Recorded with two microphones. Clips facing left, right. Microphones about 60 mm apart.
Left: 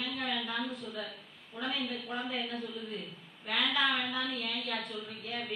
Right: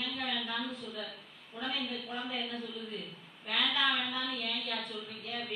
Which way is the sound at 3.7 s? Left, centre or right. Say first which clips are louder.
Left 1 dB; centre.